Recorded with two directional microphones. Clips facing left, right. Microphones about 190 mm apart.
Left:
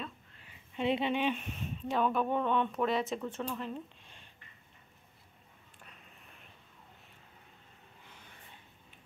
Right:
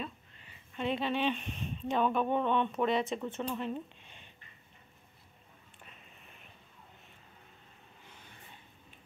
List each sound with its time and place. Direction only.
0.7 s speech: 20° left (ahead or behind)
1.1 s speech: 10° left (ahead or behind)